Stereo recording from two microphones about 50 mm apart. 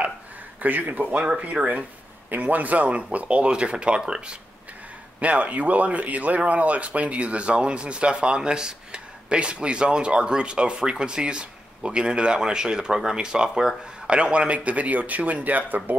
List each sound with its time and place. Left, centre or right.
0.6 s a man's voice: right
1.1 s speech: right
5.2 s speech: right